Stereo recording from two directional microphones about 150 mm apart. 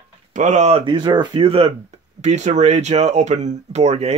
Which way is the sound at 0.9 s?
30° right (ahead or behind).